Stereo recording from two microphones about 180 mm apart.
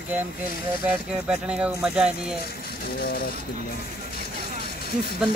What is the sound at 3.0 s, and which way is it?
Speech, 60° left (ahead or behind).